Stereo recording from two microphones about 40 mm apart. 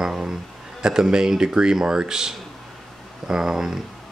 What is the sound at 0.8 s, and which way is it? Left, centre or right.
Speech, centre.